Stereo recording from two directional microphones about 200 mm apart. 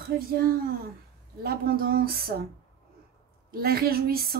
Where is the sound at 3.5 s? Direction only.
50° right (ahead or behind).